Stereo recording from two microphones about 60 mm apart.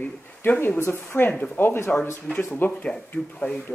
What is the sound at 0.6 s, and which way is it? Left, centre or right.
Speech, left.